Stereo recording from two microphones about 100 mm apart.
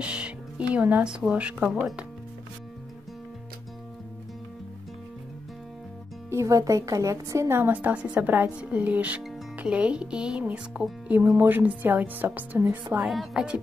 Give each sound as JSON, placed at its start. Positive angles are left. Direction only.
{"t": 0.0, "sound": "speech", "side_deg": -10}
{"t": 6.3, "sound": "a woman's voice", "side_deg": -35}
{"t": 13.0, "sound": "music", "side_deg": -5}